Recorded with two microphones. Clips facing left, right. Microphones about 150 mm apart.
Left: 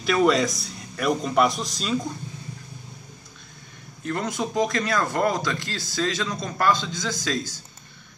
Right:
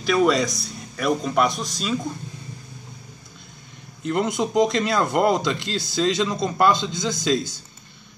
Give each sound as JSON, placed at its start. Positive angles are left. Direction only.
{"t": 0.0, "sound": "speech", "side_deg": 0}
{"t": 4.0, "sound": "speech", "side_deg": -20}